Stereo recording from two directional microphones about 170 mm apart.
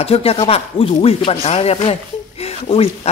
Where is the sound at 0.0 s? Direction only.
35° left (ahead or behind).